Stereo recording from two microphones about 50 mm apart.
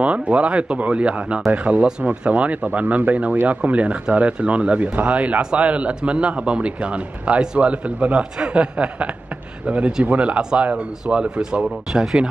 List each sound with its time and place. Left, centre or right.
0.0 s speech: right
11.9 s speech: centre